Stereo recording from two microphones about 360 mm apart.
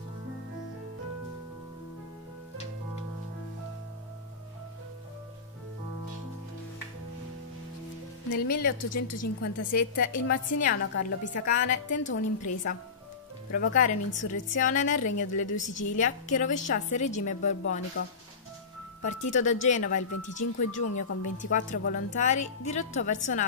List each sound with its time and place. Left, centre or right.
8.3 s a woman's voice: left
8.8 s a woman's voice: left
9.4 s a woman's voice: left
13.5 s a woman's voice: left
19.3 s a woman's voice: centre
20.8 s a woman's voice: left
21.4 s a woman's voice: left